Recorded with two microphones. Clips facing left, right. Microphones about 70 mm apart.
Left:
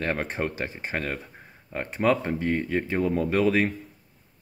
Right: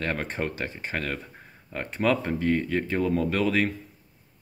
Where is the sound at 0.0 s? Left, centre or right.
Centre.